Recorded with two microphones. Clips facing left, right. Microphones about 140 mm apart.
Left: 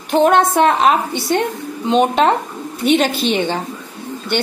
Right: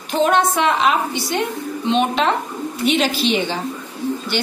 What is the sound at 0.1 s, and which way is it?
A woman's voice, 55° left (ahead or behind).